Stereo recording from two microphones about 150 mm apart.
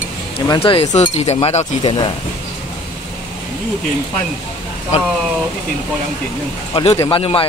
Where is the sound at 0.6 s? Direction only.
40° left (ahead or behind).